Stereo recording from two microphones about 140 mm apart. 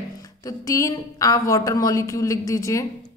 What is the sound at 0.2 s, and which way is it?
A woman's voice, 25° left (ahead or behind).